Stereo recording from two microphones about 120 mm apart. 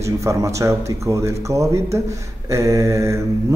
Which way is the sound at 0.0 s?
25° right (ahead or behind).